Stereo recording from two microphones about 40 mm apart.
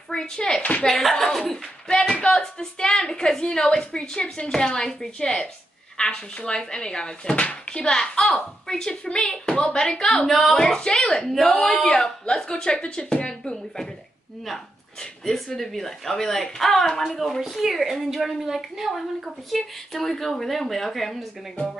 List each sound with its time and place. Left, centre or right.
0.1 s a child's voice: centre
10.2 s a woman's voice: centre
10.9 s a woman's voice: left
11.2 s a woman's voice: centre
11.7 s speech: centre
15.2 s speech: centre
17.4 s a woman's voice: centre
19.5 s a woman's voice: centre